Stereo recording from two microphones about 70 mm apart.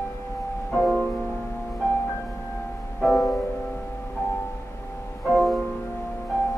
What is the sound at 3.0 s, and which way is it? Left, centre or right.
Music, centre.